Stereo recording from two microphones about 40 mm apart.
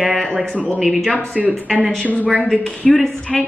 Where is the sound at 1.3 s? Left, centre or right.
Right.